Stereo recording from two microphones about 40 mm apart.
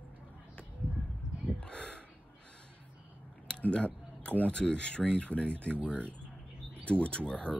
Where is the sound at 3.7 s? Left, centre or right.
Left.